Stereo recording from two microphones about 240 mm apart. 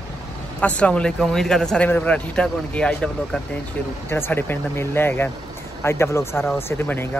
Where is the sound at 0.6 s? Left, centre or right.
Centre.